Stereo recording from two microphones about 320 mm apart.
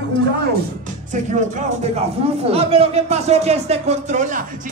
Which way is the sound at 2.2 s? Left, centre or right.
Centre.